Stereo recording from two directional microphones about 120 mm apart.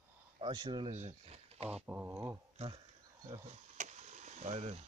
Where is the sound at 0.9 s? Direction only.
70° right (ahead or behind).